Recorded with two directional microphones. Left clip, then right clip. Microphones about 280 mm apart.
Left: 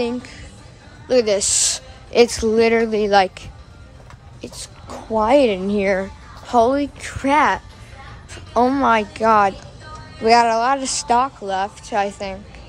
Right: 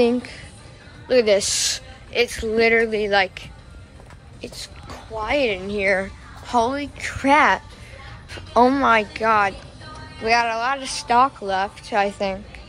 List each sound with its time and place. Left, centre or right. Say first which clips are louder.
0.0 s a woman's voice: right 5 dB; centre
4.4 s speech: even; centre